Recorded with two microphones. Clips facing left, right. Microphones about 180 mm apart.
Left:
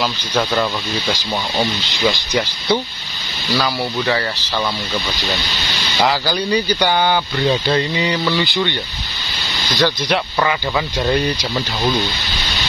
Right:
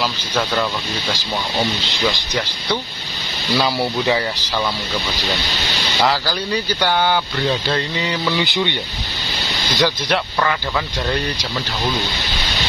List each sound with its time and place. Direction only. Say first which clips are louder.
3.5 s speech: right 1 dB; 20° right (ahead or behind)
6.7 s speech: right 1 dB; centre (ahead or behind)
8.3 s speech: left 1 dB; 15° right (ahead or behind)
9.8 s speech: left 1 dB; centre (ahead or behind)